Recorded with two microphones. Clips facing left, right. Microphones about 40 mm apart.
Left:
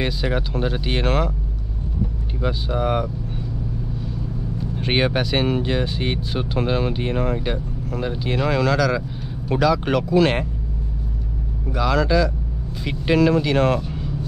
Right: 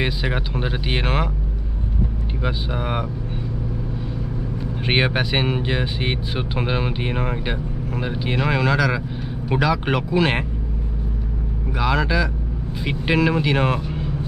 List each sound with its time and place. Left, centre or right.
0.0 s speech: centre
2.4 s speech: centre
4.7 s speech: centre
11.7 s speech: centre